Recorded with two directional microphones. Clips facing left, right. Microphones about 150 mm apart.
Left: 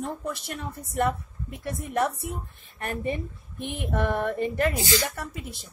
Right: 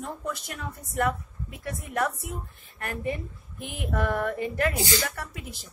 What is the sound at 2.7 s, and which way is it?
A woman's voice, 25° left (ahead or behind).